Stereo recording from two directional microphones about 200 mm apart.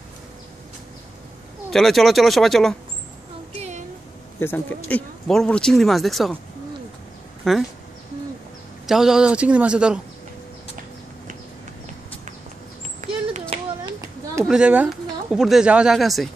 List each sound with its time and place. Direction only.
1.7 s speech: centre (ahead or behind)
4.4 s speech: 10° left (ahead or behind)
7.5 s speech: centre (ahead or behind)
8.8 s speech: centre (ahead or behind)
13.0 s a sound: 35° right (ahead or behind)
14.4 s speech: 5° right (ahead or behind)